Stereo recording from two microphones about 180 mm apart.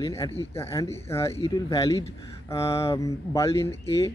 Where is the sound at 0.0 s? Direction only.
20° left (ahead or behind).